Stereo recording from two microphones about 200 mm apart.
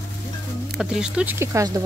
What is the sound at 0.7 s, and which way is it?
Speech, 5° right (ahead or behind).